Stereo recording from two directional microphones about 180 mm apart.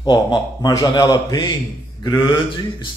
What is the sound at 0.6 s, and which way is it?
Speech, 20° left (ahead or behind).